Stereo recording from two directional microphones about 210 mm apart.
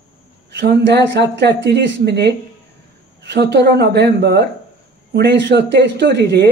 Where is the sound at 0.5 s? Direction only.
55° right (ahead or behind).